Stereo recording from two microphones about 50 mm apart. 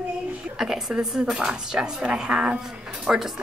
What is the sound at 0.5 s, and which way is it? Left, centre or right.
A woman's voice, centre.